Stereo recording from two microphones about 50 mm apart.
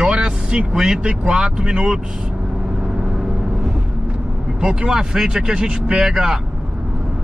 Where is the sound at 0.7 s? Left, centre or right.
Centre.